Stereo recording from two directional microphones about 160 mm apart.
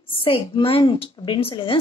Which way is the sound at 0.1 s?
30° left (ahead or behind).